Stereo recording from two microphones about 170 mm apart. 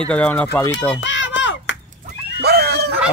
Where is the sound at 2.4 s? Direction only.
70° right (ahead or behind).